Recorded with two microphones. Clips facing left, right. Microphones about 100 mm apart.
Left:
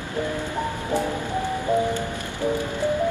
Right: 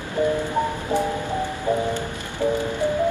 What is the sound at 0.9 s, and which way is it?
Music, 15° right (ahead or behind).